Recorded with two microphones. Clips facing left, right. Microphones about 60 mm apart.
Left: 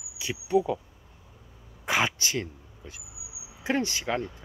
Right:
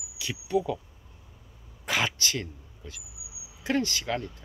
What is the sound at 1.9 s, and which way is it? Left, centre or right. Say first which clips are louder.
Speech: left 2 dB; centre.